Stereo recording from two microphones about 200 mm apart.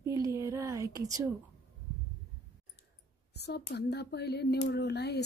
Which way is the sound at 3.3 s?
55° left (ahead or behind).